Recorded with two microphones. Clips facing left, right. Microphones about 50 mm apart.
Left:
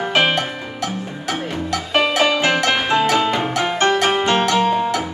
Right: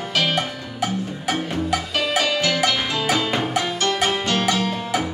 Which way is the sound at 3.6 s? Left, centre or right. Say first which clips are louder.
Left 7 dB; left.